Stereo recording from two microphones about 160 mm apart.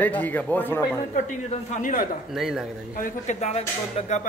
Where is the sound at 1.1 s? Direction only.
50° left (ahead or behind).